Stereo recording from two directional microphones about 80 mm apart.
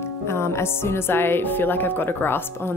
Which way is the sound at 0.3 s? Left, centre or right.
Left.